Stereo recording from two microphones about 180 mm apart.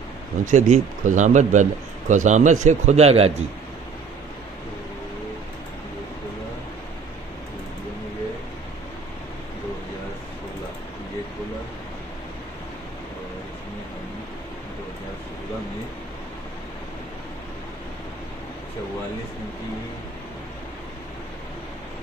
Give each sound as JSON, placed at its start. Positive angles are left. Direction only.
{"t": 0.5, "sound": "speech", "side_deg": -40}